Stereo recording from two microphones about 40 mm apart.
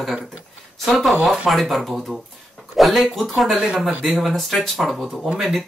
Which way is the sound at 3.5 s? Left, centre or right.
Right.